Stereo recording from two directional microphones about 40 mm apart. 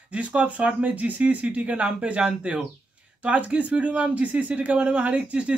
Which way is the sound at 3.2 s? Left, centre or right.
Right.